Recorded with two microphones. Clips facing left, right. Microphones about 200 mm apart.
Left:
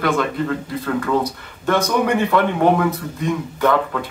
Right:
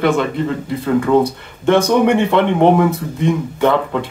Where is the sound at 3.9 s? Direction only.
25° right (ahead or behind).